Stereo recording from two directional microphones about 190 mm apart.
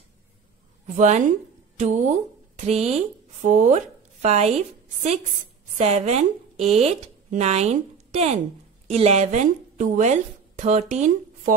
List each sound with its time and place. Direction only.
0.9 s a woman's voice: 40° right (ahead or behind)